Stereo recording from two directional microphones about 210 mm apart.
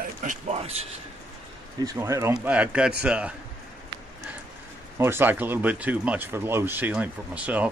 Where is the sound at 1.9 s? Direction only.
15° right (ahead or behind).